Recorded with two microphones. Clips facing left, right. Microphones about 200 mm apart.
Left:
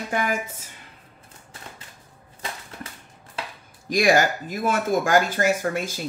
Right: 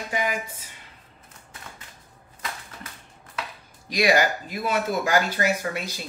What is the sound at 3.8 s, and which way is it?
Speech, 45° left (ahead or behind).